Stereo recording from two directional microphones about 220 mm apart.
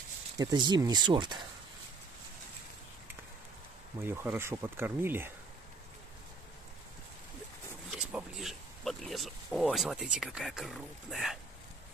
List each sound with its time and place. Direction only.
0.4 s speech: 20° right (ahead or behind)
4.0 s speech: 10° right (ahead or behind)
7.9 s a sound: 5° right (ahead or behind)
10.2 s speech: centre (ahead or behind)